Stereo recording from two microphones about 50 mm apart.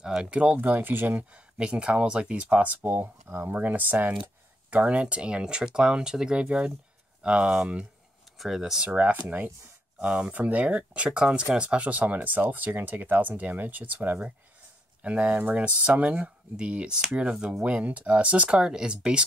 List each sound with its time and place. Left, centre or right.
0.0 s speech: centre
0.6 s speech: right
1.3 s speech: right
2.8 s speech: right
4.6 s speech: right
8.4 s speech: centre
8.8 s speech: right
9.1 s speech: right
9.9 s speech: centre
10.3 s speech: right
15.0 s speech: right